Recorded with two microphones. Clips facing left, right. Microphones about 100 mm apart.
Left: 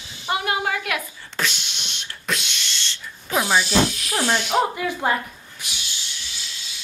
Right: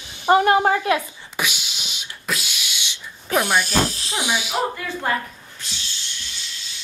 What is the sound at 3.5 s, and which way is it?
Speech, 45° right (ahead or behind).